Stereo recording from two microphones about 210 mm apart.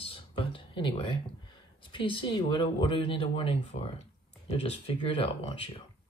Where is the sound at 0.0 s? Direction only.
25° left (ahead or behind).